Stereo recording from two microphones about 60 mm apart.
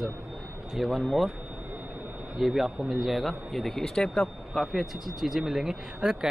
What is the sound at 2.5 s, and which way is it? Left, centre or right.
Speech, centre.